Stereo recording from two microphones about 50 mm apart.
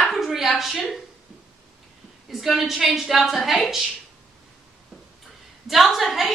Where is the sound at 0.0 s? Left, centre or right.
Centre.